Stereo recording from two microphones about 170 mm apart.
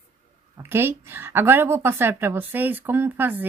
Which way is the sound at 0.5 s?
15° right (ahead or behind).